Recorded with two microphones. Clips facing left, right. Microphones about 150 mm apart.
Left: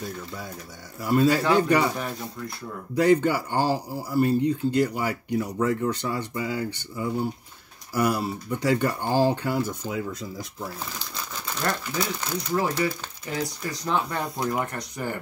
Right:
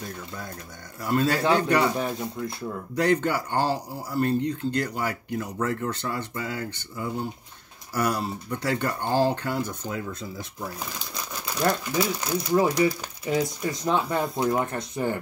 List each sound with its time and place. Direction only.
1.0 s speech: 10° left (ahead or behind)
3.0 s speech: 10° left (ahead or behind)
11.4 s speech: 10° right (ahead or behind)